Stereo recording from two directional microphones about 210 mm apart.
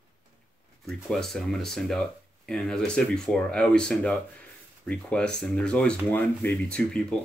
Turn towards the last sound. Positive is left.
turn(degrees=5)  # may be behind; listen again after turning